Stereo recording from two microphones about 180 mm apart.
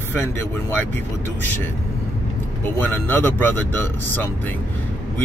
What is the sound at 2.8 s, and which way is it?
Speech, 10° left (ahead or behind).